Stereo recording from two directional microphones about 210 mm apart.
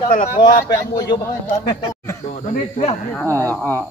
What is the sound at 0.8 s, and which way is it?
Speech, 15° left (ahead or behind).